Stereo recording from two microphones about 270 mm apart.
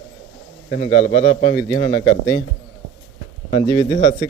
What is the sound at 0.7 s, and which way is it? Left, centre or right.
Speech, left.